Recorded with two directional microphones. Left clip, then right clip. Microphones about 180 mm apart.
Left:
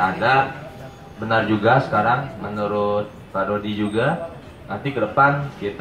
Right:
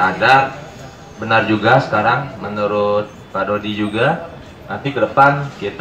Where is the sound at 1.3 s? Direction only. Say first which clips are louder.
Right 4 dB; 25° right (ahead or behind).